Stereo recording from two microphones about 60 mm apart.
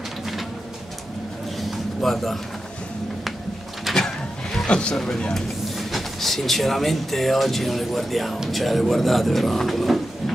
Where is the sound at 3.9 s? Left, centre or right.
Centre.